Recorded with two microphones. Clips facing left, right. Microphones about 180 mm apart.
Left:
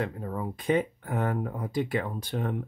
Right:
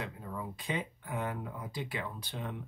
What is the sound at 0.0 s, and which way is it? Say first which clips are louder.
Speech: left 8 dB; 50° left (ahead or behind).